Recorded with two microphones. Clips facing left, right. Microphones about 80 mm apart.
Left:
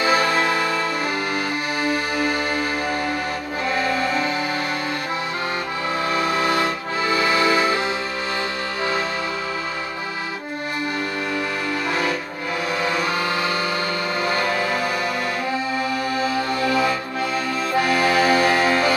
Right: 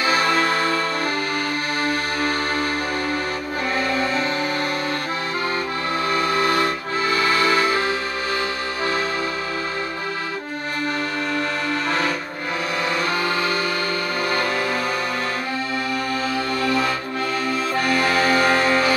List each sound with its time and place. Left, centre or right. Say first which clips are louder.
0.0 s music: left 1 dB; left
6.1 s music: right 1 dB; left
16.3 s music: even; centre